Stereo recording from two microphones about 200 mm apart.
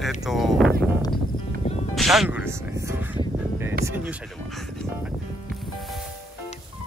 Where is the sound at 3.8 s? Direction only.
10° right (ahead or behind).